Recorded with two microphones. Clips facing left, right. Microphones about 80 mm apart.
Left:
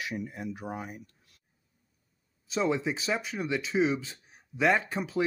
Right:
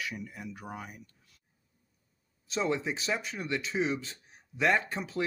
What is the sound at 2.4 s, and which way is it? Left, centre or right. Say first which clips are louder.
Speech: left 2 dB; centre.